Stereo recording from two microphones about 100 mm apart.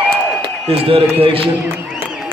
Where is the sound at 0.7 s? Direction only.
70° right (ahead or behind).